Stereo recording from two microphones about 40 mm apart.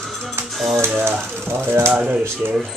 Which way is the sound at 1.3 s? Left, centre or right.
Right.